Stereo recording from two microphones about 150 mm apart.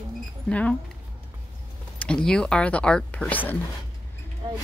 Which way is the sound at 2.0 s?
5° left (ahead or behind).